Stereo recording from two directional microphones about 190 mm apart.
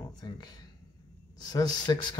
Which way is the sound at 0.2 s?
20° left (ahead or behind).